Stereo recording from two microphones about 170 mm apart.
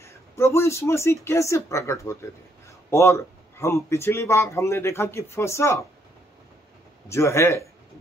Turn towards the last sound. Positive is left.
turn(degrees=15)  # may be behind; listen again after turning